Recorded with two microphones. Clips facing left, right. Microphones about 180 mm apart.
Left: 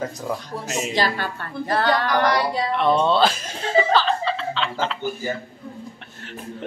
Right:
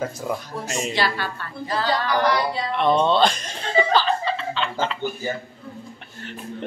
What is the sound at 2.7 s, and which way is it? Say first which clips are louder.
Chuckle: right 1 dB; centre (ahead or behind).